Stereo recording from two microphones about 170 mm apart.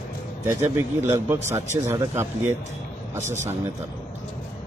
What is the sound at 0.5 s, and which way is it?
Speech, 15° right (ahead or behind).